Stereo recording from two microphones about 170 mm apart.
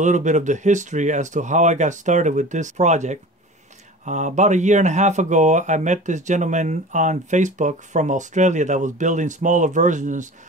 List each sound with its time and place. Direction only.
0.0 s speech: 45° right (ahead or behind)